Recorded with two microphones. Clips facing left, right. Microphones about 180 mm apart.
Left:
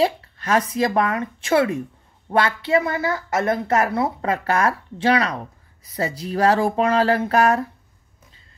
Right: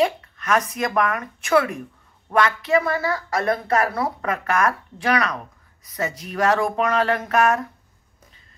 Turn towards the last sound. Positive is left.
turn(degrees=30)  # may be behind; listen again after turning